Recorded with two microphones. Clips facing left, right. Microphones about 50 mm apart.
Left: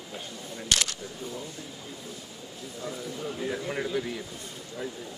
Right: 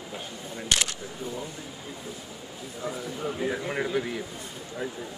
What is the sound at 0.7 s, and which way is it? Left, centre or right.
Speech, right.